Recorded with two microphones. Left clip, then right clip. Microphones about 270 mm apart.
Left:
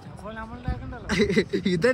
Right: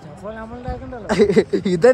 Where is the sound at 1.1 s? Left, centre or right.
Centre.